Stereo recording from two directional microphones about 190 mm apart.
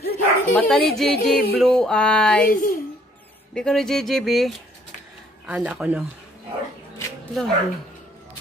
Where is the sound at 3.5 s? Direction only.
5° left (ahead or behind).